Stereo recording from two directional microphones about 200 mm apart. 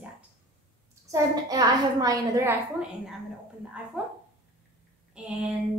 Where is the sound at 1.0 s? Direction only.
15° right (ahead or behind).